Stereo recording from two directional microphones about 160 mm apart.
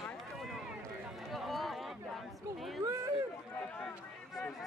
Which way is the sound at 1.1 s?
Centre (ahead or behind).